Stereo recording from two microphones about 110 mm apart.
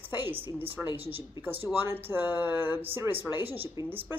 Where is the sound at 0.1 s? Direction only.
20° right (ahead or behind).